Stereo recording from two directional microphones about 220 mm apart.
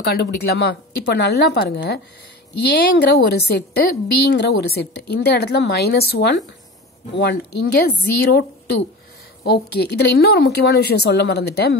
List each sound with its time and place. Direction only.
0.0 s a woman's voice: 45° left (ahead or behind)